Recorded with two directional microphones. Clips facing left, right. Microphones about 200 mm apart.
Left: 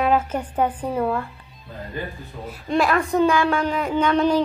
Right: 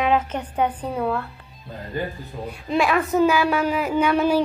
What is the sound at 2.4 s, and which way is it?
A woman's voice, centre (ahead or behind).